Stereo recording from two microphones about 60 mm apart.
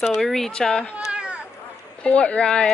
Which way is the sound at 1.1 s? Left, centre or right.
Centre.